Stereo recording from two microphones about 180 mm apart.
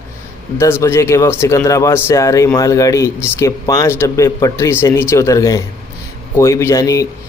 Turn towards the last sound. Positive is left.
turn(degrees=20)  # may be behind; listen again after turning